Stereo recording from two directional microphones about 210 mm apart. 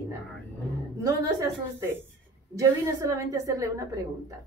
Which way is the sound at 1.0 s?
15° right (ahead or behind).